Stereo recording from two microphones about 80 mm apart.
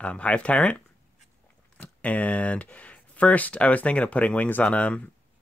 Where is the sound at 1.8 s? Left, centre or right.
Centre.